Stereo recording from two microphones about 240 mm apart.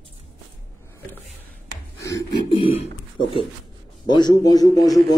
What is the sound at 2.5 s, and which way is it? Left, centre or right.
A man's voice, left.